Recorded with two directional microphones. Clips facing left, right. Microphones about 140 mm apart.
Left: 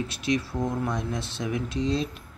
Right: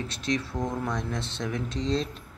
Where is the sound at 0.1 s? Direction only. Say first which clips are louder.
Left 2 dB; 5° left (ahead or behind).